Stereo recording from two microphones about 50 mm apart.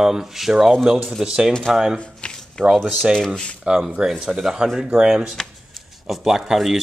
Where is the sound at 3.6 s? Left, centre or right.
Centre.